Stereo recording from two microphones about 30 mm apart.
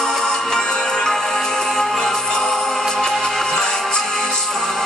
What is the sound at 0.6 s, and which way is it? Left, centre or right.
Music, left.